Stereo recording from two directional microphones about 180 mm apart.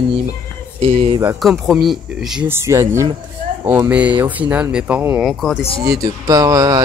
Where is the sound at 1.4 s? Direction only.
Centre (ahead or behind).